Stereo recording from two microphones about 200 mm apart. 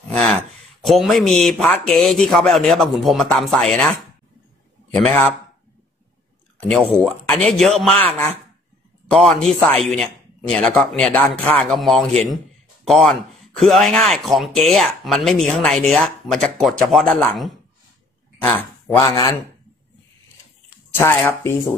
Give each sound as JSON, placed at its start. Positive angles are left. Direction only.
{"t": 0.1, "sound": "speech", "side_deg": 0}
{"t": 6.6, "sound": "speech", "side_deg": 5}
{"t": 21.0, "sound": "speech", "side_deg": 10}